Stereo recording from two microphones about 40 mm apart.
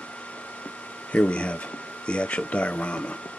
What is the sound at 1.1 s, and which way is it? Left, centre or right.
Speech, left.